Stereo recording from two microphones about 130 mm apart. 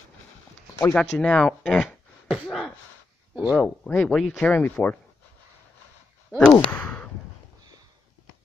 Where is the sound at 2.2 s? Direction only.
5° right (ahead or behind).